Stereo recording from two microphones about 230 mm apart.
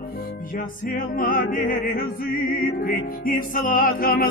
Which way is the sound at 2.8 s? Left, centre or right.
Left.